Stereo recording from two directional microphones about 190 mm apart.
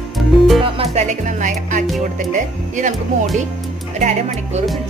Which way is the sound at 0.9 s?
40° right (ahead or behind).